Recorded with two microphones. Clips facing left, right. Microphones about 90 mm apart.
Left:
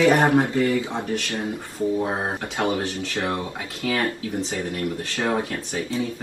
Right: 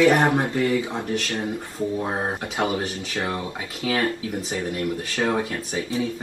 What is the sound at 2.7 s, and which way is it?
Speech, 30° left (ahead or behind).